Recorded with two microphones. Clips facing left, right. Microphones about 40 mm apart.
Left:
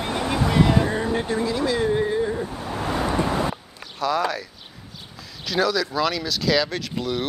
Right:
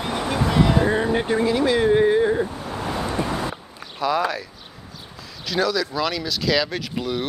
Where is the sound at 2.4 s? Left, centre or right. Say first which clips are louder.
Left 1 dB; centre.